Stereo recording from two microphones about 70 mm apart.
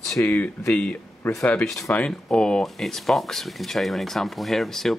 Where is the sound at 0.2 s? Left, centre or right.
Left.